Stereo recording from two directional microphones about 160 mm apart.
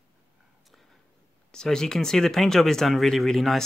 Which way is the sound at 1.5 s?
5° left (ahead or behind).